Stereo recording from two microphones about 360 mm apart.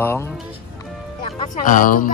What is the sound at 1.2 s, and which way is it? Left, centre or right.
Speech, centre.